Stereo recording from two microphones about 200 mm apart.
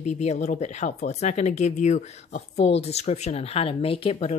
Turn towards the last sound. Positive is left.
turn(degrees=30)  # may be behind; listen again after turning